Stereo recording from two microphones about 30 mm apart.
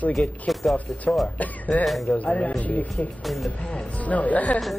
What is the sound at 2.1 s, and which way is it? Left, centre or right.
Speech, left.